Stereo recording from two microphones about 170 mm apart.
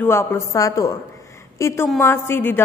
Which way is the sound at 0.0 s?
15° left (ahead or behind).